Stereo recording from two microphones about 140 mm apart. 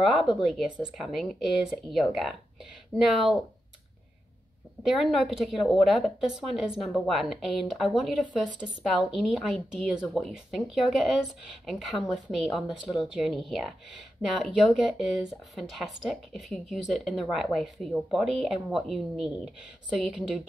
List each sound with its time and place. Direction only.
0.0 s a woman's voice: centre (ahead or behind)
4.8 s a woman's voice: centre (ahead or behind)
6.9 s speech: 10° left (ahead or behind)
7.2 s a woman's voice: centre (ahead or behind)